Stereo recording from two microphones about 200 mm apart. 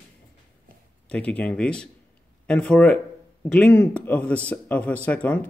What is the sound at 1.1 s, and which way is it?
Speech, 5° left (ahead or behind).